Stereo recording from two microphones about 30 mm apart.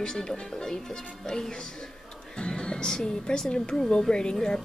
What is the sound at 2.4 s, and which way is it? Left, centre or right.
Music, left.